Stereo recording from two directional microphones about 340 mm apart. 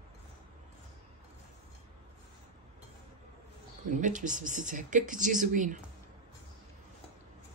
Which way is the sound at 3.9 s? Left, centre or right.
Right.